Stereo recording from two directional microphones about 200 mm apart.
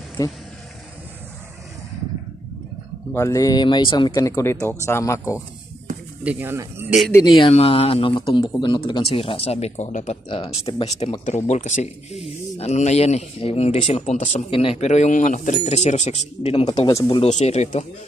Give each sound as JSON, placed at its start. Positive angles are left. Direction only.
{"t": 0.2, "sound": "speech", "side_deg": 15}
{"t": 3.1, "sound": "speech", "side_deg": 15}
{"t": 6.2, "sound": "speech", "side_deg": -10}
{"t": 7.1, "sound": "speech", "side_deg": 15}
{"t": 7.3, "sound": "speech", "side_deg": 25}
{"t": 16.8, "sound": "speech", "side_deg": 25}